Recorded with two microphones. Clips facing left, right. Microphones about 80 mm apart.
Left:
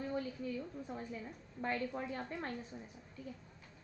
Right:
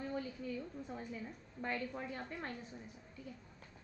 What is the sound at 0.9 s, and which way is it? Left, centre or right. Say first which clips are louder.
A woman's voice: left 1 dB; centre.